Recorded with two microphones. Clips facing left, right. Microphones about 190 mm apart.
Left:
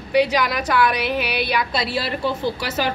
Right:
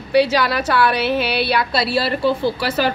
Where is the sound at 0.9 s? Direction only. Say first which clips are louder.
Right 4 dB; 30° right (ahead or behind).